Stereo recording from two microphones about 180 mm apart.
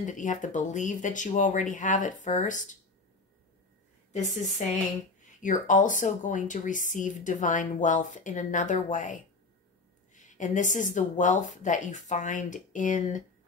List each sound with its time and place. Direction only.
0.0 s speech: 45° left (ahead or behind)
4.1 s a woman's voice: 40° left (ahead or behind)